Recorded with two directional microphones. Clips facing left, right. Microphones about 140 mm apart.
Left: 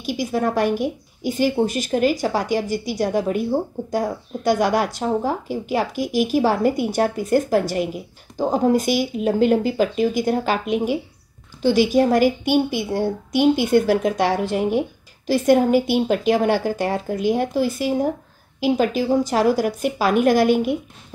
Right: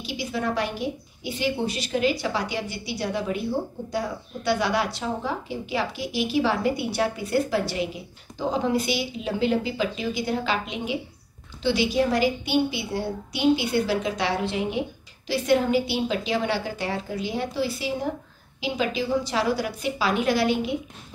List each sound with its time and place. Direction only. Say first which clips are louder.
0.0 s speech: left 7 dB; 45° left (ahead or behind)